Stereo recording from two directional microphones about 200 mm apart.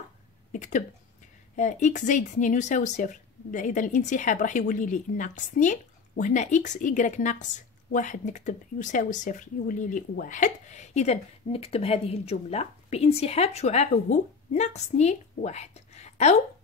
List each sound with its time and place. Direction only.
0.5 s a woman's voice: 40° left (ahead or behind)